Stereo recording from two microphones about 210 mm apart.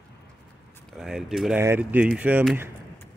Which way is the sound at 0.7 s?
Centre (ahead or behind).